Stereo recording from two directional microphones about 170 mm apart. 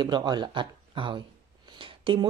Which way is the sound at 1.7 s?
30° right (ahead or behind).